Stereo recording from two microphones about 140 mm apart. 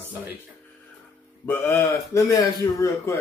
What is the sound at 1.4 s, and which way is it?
A man's voice, 15° left (ahead or behind).